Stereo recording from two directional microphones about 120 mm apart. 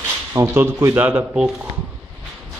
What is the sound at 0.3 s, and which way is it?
A man's voice, 25° right (ahead or behind).